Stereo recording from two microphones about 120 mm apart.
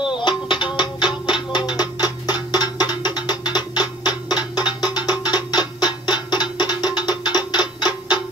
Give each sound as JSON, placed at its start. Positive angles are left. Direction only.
{"t": 0.0, "sound": "music", "side_deg": 40}